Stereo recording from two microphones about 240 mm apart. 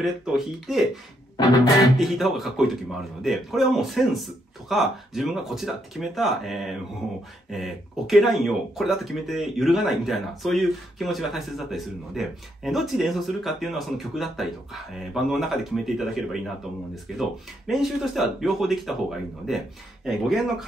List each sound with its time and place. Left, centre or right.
0.0 s speech: centre
1.3 s music: centre
2.0 s speech: centre
20.1 s speech: centre